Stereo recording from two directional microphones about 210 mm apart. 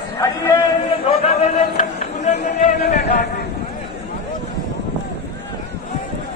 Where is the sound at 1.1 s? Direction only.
30° left (ahead or behind).